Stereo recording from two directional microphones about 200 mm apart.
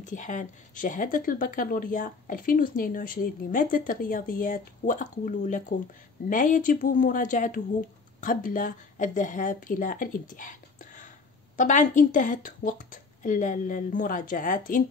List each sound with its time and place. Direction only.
0.0 s a woman's voice: 40° left (ahead or behind)